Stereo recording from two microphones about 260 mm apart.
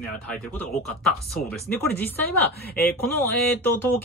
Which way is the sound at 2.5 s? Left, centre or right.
Left.